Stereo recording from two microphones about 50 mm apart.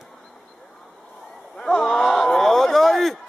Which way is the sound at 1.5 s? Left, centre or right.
Centre.